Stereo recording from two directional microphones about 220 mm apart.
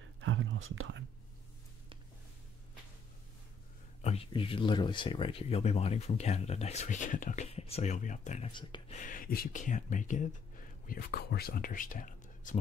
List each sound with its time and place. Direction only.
0.2 s speech: 60° right (ahead or behind)
4.0 s speech: 25° left (ahead or behind)
8.9 s speech: 35° left (ahead or behind)